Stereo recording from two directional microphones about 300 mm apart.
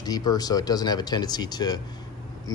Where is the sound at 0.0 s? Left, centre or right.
Centre.